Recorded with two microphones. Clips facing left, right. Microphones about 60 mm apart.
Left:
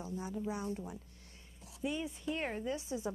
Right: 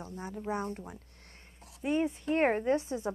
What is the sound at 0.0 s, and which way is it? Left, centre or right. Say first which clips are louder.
Speech: even; right.